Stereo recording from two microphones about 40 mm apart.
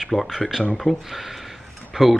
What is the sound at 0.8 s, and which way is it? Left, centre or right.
Dishes, left.